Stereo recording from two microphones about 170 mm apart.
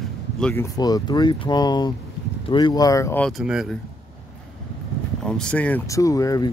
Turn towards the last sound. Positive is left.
turn(degrees=20)  # may be behind; listen again after turning